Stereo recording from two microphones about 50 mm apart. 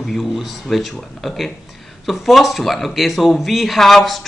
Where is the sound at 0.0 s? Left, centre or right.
Centre.